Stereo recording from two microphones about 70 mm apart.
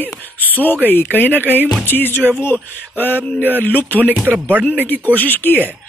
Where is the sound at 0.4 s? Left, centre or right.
Left.